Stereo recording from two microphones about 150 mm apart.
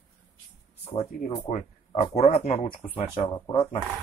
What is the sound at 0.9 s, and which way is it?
Speech, 45° left (ahead or behind).